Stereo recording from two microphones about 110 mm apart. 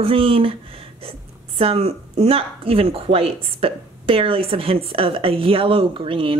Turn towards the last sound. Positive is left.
turn(degrees=-55)  # may be behind; listen again after turning